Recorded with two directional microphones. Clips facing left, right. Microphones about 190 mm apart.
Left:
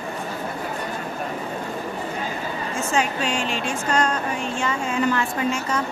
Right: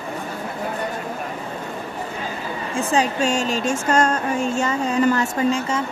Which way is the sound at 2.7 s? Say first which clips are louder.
Right 4 dB; 35° right (ahead or behind).